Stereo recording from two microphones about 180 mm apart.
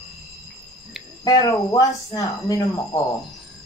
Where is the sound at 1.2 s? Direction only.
25° left (ahead or behind).